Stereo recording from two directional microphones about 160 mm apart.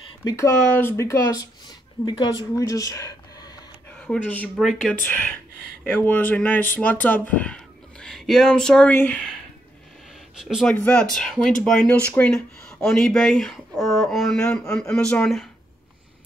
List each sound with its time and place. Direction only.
0.2 s speech: 25° left (ahead or behind)
0.7 s a woman's voice: 15° left (ahead or behind)
4.1 s speech: 5° left (ahead or behind)
4.9 s speech: 10° left (ahead or behind)
10.4 s speech: centre (ahead or behind)